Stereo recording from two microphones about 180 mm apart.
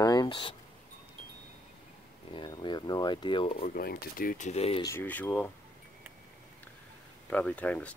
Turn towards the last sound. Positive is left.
turn(degrees=10)  # may be behind; listen again after turning